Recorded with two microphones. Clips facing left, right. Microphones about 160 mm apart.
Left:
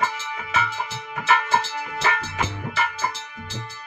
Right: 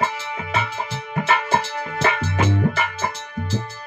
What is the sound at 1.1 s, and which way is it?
Music, 30° right (ahead or behind).